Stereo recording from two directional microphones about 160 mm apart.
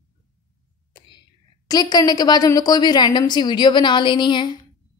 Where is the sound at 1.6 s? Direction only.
25° left (ahead or behind).